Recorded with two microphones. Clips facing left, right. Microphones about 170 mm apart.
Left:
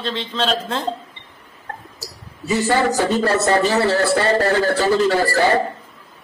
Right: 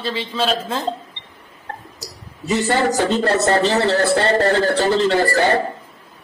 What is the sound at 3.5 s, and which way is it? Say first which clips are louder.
Speech: even; 40° right (ahead or behind).